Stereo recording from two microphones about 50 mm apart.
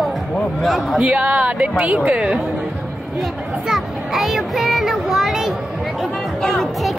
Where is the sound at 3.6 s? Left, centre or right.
Centre.